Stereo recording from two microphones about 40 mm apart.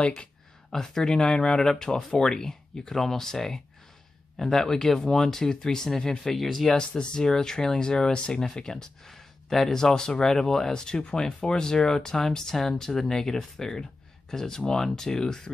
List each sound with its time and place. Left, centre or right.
0.7 s speech: centre
7.0 s speech: centre